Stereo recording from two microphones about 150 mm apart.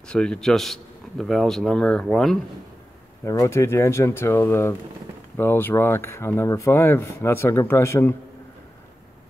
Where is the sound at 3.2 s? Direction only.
20° left (ahead or behind).